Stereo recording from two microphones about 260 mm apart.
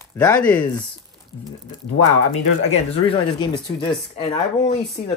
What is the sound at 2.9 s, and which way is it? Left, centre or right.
Speech, centre.